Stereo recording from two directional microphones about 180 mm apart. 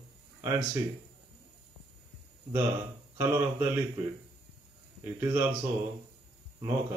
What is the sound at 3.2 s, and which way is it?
Speech, 15° right (ahead or behind).